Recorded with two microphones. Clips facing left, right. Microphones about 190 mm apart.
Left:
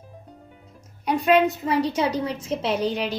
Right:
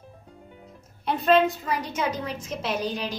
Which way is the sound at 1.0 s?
15° left (ahead or behind).